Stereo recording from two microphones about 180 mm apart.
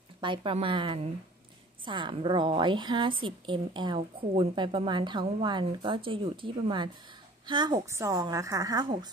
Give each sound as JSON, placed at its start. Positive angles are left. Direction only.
{"t": 0.2, "sound": "a woman's voice", "side_deg": -30}